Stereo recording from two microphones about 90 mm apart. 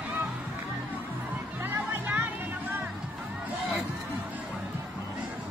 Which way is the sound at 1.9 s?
20° right (ahead or behind).